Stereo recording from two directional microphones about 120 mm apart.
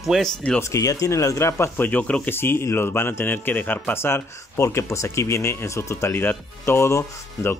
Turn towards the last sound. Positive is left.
turn(degrees=20)  # may be behind; listen again after turning